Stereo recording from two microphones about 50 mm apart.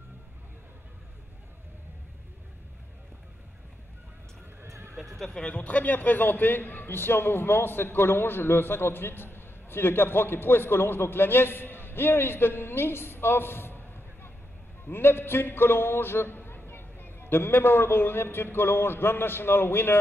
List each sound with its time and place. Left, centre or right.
4.6 s neigh: right
5.4 s a man's voice: left